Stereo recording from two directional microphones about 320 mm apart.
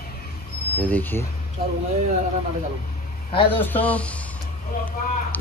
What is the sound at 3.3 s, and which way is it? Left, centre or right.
Speech, centre.